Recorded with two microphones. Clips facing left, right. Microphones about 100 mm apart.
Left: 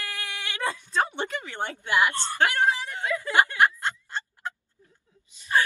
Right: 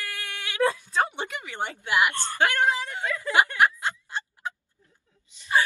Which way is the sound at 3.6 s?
15° right (ahead or behind).